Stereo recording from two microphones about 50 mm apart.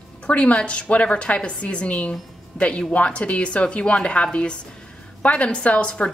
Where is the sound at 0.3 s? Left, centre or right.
Left.